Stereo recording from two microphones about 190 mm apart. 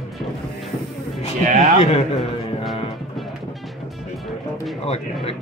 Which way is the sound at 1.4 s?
40° right (ahead or behind).